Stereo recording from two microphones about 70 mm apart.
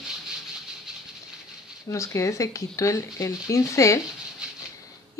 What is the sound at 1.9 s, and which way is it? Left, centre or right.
Speech, left.